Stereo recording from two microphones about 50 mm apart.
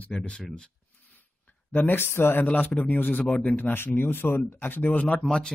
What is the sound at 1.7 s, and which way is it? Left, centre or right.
Speech, left.